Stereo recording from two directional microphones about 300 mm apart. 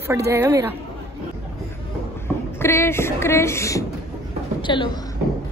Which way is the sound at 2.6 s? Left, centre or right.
Centre.